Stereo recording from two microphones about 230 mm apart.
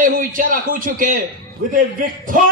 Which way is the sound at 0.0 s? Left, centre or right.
Right.